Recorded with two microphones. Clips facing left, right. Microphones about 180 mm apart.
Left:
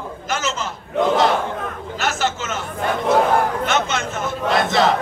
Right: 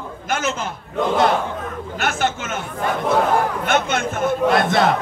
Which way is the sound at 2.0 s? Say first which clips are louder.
Even; 55° right (ahead or behind).